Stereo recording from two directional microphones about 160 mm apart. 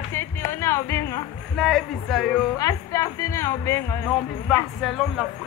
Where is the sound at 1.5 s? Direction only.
Centre (ahead or behind).